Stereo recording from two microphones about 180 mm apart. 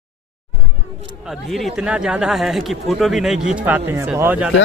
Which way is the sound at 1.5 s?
Centre (ahead or behind).